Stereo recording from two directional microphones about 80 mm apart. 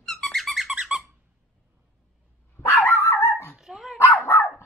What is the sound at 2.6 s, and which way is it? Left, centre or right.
Dog, left.